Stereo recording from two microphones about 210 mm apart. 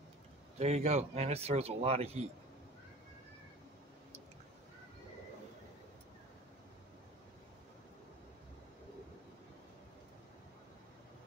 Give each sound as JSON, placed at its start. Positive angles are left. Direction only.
{"t": 0.6, "sound": "speech", "side_deg": -30}